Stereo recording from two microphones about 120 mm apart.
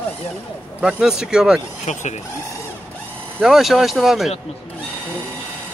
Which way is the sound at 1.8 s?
75° left (ahead or behind).